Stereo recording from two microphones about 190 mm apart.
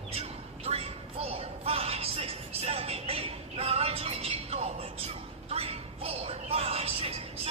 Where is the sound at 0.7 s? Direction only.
30° right (ahead or behind).